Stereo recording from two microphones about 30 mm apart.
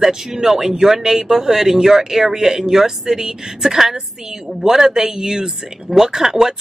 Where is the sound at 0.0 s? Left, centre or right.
Centre.